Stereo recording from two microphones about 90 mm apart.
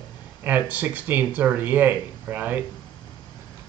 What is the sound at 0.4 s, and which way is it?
Speech, 20° right (ahead or behind).